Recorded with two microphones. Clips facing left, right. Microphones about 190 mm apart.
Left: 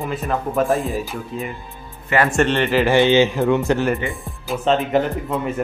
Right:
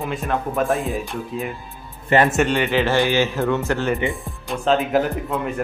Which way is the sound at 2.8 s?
20° left (ahead or behind).